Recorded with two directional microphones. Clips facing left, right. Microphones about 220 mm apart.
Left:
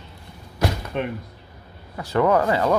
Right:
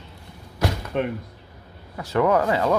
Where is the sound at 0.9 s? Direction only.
40° right (ahead or behind).